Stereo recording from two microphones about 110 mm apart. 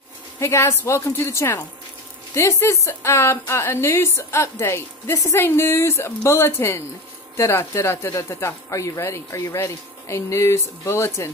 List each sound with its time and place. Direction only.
0.4 s a woman's voice: 25° left (ahead or behind)